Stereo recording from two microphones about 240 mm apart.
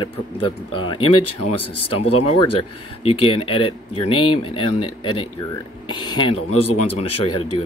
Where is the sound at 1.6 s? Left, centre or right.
Left.